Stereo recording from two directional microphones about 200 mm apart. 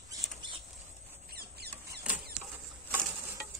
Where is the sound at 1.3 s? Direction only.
50° right (ahead or behind).